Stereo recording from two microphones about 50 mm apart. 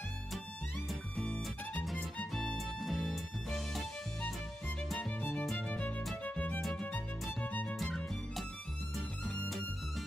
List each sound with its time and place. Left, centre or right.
2.3 s music: centre
5.7 s music: left
6.6 s music: centre